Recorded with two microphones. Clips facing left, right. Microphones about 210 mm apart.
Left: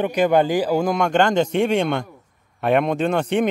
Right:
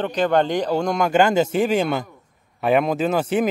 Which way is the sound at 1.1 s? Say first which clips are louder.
Right 3 dB; 5° right (ahead or behind).